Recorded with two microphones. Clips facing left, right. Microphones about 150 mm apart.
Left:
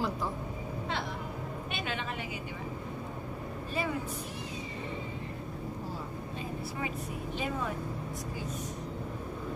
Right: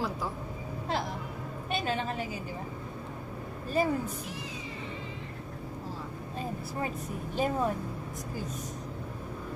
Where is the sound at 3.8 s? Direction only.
45° right (ahead or behind).